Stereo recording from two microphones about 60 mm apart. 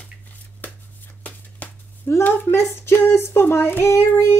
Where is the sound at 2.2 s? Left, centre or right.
Left.